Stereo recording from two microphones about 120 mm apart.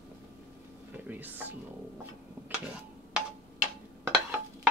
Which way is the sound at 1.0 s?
15° right (ahead or behind).